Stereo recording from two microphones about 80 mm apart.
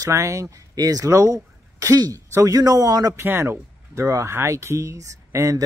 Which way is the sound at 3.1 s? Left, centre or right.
Right.